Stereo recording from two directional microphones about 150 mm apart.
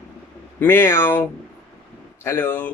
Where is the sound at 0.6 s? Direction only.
15° left (ahead or behind).